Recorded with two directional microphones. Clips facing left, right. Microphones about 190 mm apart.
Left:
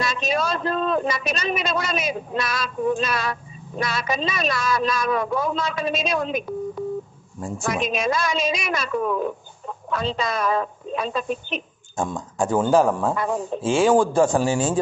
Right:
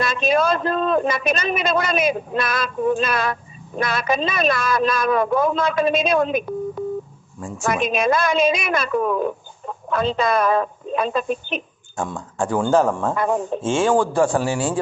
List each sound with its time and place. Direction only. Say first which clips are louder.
0.0 s speech: right 5 dB; 55° right (ahead or behind)
7.6 s speech: right 4 dB; 55° right (ahead or behind)
12.0 s speech: even; 20° left (ahead or behind)
12.7 s speech: right 1 dB; 5° left (ahead or behind)
13.1 s speech: right 3 dB; 55° right (ahead or behind)
13.7 s speech: left 1 dB; 15° left (ahead or behind)